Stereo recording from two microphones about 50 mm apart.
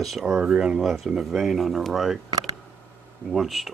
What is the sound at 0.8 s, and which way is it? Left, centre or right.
Speech, centre.